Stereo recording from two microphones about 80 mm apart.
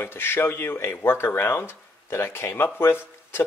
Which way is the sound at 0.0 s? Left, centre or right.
Left.